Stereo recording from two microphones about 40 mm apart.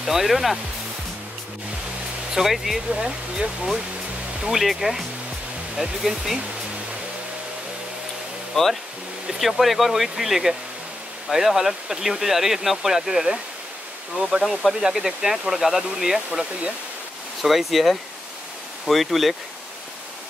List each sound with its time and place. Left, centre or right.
0.0 s speech: centre
2.3 s speech: centre
2.9 s speech: centre
4.4 s speech: centre
8.5 s speech: centre
17.4 s speech: centre